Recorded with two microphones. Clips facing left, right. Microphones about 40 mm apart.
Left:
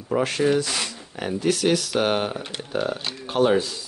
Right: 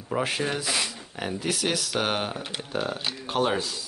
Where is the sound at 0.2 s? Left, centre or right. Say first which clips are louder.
Left 7 dB; centre.